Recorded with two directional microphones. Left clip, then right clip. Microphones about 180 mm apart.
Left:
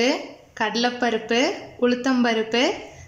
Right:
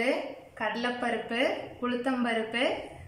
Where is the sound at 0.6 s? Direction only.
55° left (ahead or behind).